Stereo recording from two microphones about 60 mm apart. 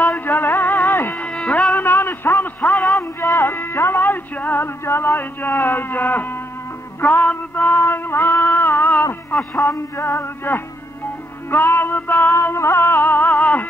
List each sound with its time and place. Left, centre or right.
0.0 s music: left
1.2 s a sound: left
3.3 s music: left
9.3 s a man's voice: centre
9.7 s music: left
12.5 s music: left